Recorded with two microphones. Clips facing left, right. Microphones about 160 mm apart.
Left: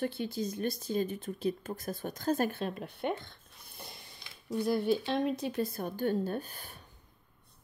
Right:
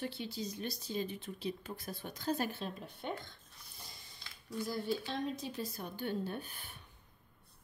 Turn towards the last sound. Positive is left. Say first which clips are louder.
# left 6 dB
turn(degrees=40)  # may be behind; listen again after turning